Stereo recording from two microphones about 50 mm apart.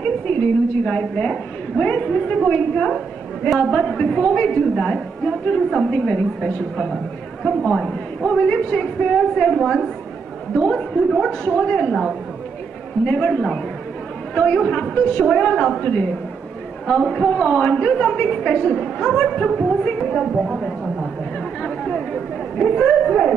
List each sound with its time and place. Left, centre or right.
0.0 s a woman's voice: left
7.4 s a man's voice: centre
8.3 s a woman's voice: centre
11.6 s a woman's voice: centre
13.0 s a woman's voice: left
15.8 s a woman's voice: left
16.8 s a man's voice: centre
17.3 s a woman's voice: centre
20.1 s a woman's voice: centre
21.6 s chatter: centre